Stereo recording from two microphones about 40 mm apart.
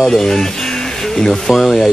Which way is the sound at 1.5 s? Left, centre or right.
Centre.